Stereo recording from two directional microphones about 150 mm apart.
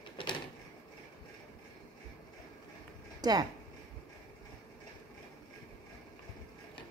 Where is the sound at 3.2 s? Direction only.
25° right (ahead or behind).